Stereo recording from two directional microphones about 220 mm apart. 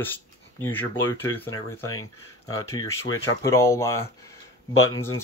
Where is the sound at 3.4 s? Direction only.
15° left (ahead or behind).